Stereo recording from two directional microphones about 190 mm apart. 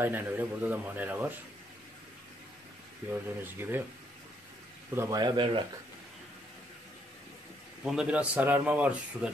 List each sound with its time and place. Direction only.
0.0 s speech: 10° right (ahead or behind)
3.1 s speech: 10° right (ahead or behind)
4.9 s speech: 15° right (ahead or behind)
7.8 s speech: 5° right (ahead or behind)